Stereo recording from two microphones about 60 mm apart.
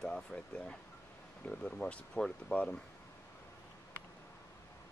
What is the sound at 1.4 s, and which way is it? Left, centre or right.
Speech, centre.